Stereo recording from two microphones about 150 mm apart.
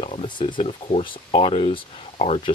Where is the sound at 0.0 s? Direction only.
35° left (ahead or behind).